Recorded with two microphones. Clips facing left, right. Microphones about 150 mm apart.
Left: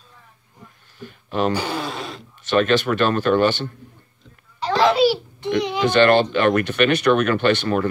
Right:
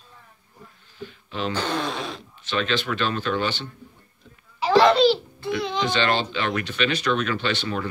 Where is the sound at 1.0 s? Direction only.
50° left (ahead or behind).